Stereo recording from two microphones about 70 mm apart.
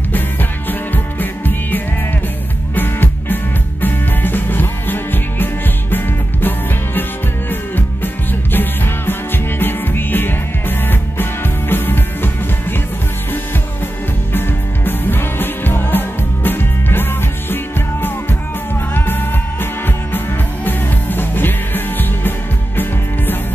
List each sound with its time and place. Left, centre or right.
0.1 s music: left
14.3 s music: left
18.9 s music: left